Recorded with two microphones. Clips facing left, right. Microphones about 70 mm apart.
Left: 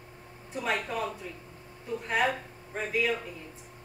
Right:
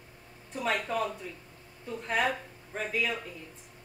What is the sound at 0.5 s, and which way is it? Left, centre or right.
Speech, centre.